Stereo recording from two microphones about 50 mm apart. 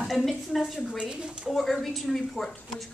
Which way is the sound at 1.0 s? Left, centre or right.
Centre.